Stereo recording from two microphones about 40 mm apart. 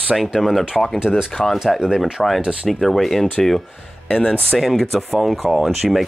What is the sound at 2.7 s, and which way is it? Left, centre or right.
Speech, centre.